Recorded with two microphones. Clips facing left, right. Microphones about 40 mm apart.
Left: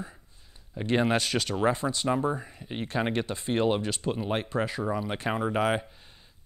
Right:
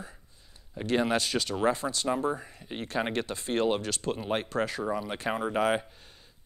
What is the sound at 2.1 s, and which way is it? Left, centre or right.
Speech, centre.